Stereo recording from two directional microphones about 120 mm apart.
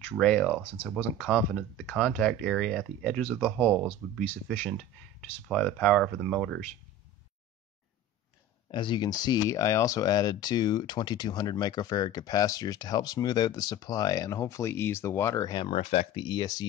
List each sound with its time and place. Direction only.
0.0 s speech: 10° left (ahead or behind)
3.2 s speech: 20° left (ahead or behind)
3.5 s speech: centre (ahead or behind)
5.2 s speech: 5° left (ahead or behind)
8.6 s speech: 40° left (ahead or behind); by 15.4 s 25° left (ahead or behind)
15.4 s speech: 40° left (ahead or behind)
15.7 s speech: 60° left (ahead or behind)
16.2 s speech: 40° left (ahead or behind)